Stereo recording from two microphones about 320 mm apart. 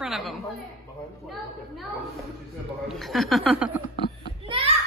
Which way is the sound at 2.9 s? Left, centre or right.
Centre.